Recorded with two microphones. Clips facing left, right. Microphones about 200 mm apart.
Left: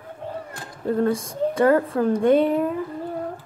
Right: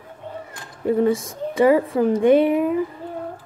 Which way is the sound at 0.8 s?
10° right (ahead or behind).